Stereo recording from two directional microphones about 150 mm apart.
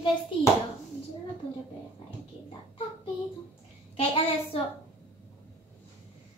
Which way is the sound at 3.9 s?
40° left (ahead or behind).